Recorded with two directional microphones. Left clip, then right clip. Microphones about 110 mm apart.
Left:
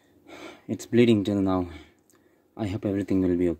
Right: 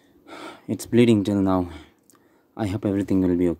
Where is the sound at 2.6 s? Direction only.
20° right (ahead or behind).